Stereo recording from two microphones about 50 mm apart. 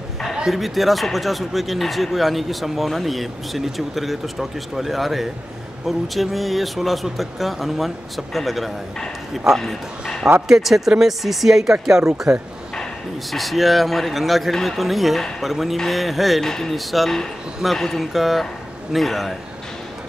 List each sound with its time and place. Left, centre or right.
0.5 s speech: centre
9.6 s speech: centre
10.5 s speech: centre
13.3 s speech: centre
18.1 s speech: centre